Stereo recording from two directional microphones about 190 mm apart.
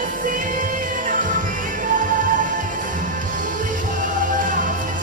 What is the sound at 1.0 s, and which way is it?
Music, 45° right (ahead or behind).